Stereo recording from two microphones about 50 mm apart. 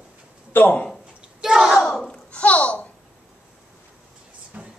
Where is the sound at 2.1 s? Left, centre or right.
Left.